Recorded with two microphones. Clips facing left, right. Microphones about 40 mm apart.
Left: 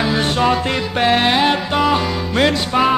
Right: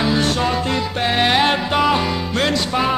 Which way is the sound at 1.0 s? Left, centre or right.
Centre.